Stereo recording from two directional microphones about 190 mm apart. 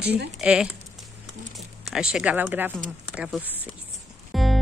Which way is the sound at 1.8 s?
5° right (ahead or behind).